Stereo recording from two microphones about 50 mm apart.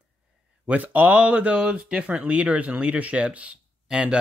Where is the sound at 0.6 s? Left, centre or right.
Right.